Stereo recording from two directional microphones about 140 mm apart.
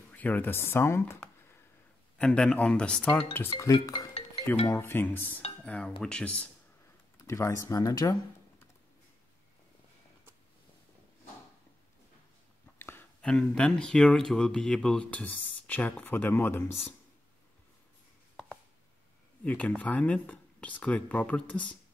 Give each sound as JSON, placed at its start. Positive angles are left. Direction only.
{"t": 0.1, "sound": "speech", "side_deg": 10}
{"t": 2.1, "sound": "speech", "side_deg": 5}
{"t": 3.5, "sound": "music", "side_deg": 25}
{"t": 4.7, "sound": "speech", "side_deg": 15}
{"t": 7.2, "sound": "speech", "side_deg": 20}
{"t": 12.7, "sound": "speech", "side_deg": 15}
{"t": 18.3, "sound": "a sound", "side_deg": 5}
{"t": 19.4, "sound": "speech", "side_deg": 10}